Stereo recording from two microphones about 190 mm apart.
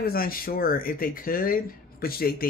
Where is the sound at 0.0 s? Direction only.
50° left (ahead or behind).